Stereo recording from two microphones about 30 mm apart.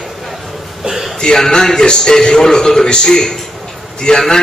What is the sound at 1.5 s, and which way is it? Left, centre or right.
A man's voice, left.